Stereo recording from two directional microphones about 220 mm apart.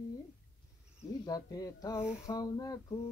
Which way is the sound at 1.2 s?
15° left (ahead or behind).